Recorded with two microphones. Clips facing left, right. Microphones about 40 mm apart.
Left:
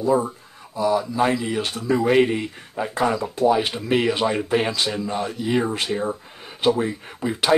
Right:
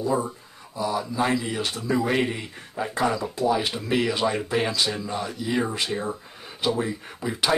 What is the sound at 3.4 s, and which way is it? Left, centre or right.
Speech, left.